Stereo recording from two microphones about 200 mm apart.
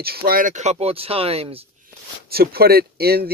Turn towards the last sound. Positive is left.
turn(degrees=-50)  # may be behind; listen again after turning